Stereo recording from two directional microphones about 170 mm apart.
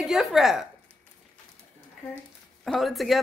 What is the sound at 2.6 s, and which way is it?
Speech, centre (ahead or behind).